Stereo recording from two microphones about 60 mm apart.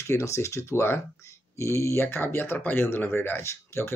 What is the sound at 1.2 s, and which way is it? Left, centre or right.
Speech, left.